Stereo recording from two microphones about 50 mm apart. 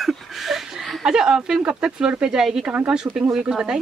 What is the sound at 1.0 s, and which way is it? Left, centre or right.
A man's voice, centre.